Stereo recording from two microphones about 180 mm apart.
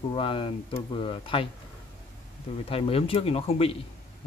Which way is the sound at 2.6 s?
30° left (ahead or behind).